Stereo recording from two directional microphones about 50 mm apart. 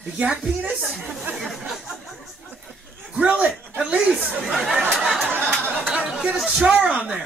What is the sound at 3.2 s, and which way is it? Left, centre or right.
Speech, right.